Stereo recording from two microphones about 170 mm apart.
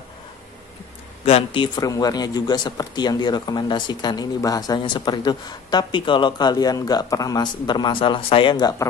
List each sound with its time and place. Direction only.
1.2 s speech: 30° left (ahead or behind)